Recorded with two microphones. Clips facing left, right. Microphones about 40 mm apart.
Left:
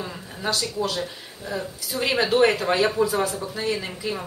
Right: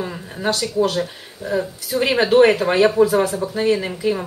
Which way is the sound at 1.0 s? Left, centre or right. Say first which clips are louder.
Right 4 dB; centre.